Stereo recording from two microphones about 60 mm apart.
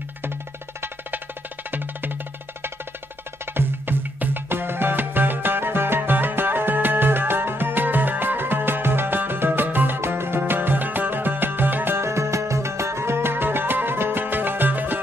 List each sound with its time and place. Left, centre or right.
1.7 s music: right
3.5 s music: right